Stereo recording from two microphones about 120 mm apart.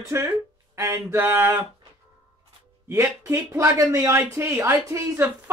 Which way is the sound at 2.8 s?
25° right (ahead or behind).